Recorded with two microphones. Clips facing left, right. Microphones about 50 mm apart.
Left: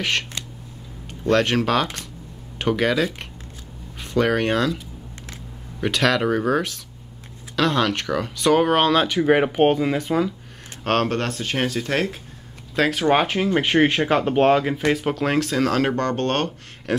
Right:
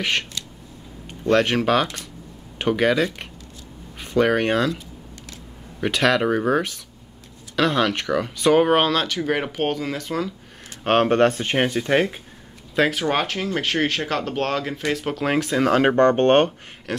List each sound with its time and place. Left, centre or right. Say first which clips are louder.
1.2 s speech: right 1 dB; centre
8.9 s speech: left 5 dB; centre
10.8 s speech: right 2 dB; centre
11.1 s speech: right 7 dB; right; by 13.0 s centre
13.0 s speech: left 4 dB; centre; by 16.5 s right